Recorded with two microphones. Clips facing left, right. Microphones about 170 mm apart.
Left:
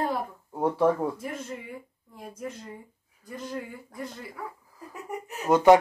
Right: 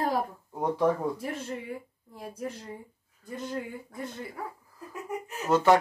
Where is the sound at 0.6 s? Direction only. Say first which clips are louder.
Left 2 dB; 5° left (ahead or behind).